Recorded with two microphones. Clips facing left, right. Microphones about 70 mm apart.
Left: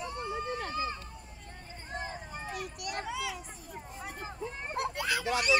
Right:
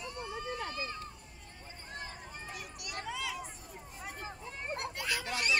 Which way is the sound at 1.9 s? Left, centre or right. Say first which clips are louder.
Left 6 dB; left.